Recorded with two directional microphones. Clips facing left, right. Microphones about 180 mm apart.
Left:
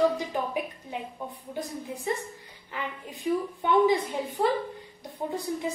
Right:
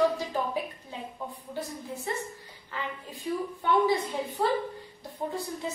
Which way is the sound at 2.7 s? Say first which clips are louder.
Left 1 dB; 15° left (ahead or behind).